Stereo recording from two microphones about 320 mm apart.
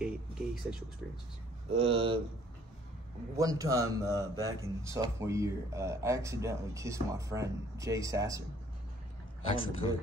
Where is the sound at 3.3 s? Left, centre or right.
Centre.